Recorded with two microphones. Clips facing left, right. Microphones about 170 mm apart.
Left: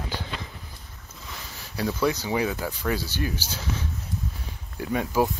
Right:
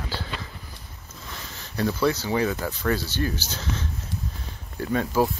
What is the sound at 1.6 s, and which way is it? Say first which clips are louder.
Speech: right 2 dB; 10° left (ahead or behind).